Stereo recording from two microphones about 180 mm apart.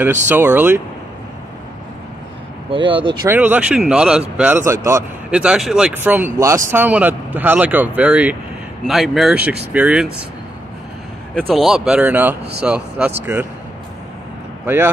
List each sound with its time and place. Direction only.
0.0 s speech: 10° right (ahead or behind)
2.7 s speech: 25° right (ahead or behind)
3.3 s speech: 10° right (ahead or behind)
5.3 s speech: 5° right (ahead or behind)
11.3 s speech: centre (ahead or behind)